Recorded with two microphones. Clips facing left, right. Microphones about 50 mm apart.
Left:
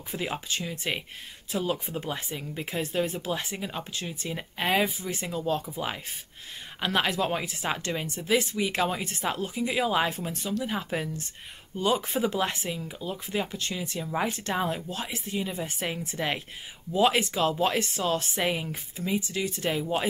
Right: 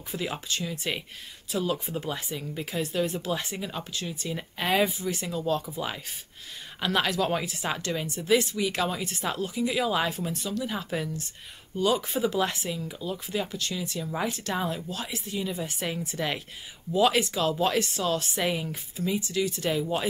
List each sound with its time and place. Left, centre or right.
0.1 s speech: centre